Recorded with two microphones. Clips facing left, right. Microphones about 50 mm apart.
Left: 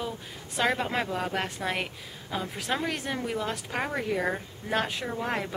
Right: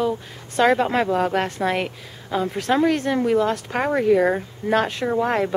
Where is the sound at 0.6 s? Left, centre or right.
Centre.